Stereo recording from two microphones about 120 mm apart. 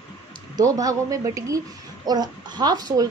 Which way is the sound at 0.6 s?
30° right (ahead or behind).